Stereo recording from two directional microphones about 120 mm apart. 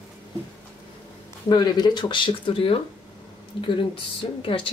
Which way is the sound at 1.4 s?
35° left (ahead or behind).